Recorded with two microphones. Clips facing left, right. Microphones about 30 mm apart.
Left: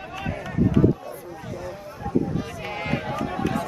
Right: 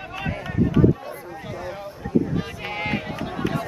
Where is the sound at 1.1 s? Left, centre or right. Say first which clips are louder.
Right 1 dB; right.